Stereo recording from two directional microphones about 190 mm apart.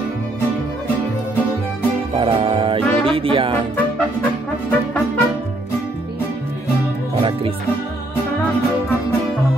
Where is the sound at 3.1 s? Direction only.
30° right (ahead or behind).